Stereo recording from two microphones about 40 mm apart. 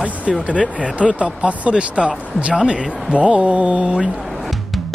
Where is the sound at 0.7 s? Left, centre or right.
Right.